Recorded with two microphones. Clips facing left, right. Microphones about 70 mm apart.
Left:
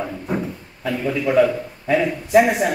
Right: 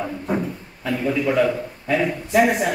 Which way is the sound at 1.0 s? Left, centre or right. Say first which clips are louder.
Left 2 dB; centre.